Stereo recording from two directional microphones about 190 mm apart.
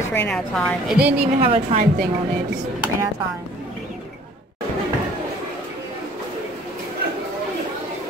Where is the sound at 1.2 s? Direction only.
35° right (ahead or behind).